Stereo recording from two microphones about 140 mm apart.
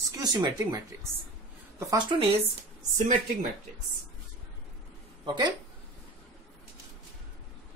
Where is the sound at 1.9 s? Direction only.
35° right (ahead or behind).